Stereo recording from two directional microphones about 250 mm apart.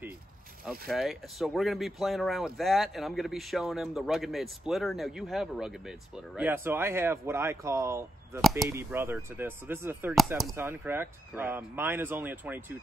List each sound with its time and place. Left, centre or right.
0.7 s speech: centre
8.4 s speech: centre